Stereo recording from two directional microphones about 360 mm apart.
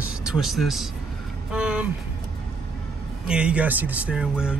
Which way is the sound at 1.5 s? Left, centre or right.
Centre.